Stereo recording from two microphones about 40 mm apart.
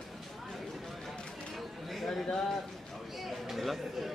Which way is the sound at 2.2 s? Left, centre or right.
Centre.